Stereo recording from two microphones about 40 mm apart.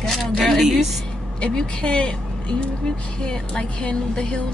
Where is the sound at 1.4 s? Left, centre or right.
Left.